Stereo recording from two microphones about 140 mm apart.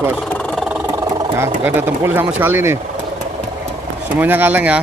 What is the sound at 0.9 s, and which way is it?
Speech, 20° right (ahead or behind).